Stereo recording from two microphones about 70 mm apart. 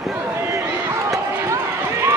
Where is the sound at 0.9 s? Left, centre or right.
Right.